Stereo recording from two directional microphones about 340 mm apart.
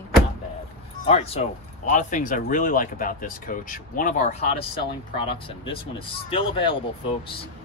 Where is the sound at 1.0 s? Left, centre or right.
Centre.